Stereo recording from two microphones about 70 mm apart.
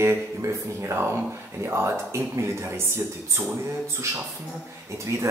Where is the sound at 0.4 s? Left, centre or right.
Right.